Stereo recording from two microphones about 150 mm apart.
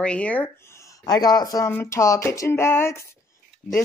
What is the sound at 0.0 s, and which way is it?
Speech, 5° left (ahead or behind).